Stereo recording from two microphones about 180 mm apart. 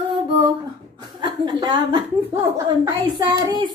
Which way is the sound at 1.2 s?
25° right (ahead or behind).